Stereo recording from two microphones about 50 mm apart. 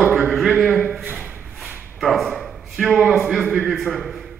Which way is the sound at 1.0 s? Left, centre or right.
Right.